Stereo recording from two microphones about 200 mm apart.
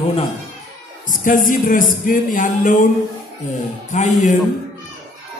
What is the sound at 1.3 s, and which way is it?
Speech, 40° left (ahead or behind).